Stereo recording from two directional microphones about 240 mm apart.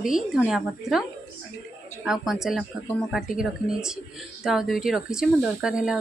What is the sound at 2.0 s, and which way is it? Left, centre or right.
Speech, centre.